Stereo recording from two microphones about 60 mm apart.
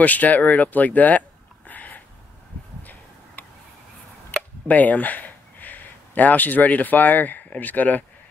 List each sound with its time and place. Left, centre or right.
0.0 s speech: left
1.7 s a sound: left
4.4 s speech: left